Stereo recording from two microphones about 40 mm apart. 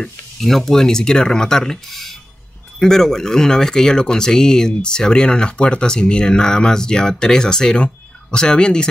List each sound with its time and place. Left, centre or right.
0.4 s speech: centre; by 8.8 s left